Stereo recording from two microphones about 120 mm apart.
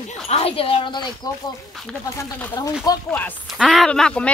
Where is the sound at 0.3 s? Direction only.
55° left (ahead or behind); by 1.1 s 40° left (ahead or behind).